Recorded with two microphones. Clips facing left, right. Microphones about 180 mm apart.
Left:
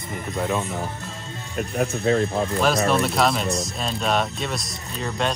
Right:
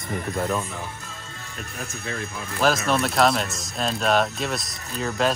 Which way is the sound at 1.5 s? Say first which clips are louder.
Left 12 dB; 60° left (ahead or behind).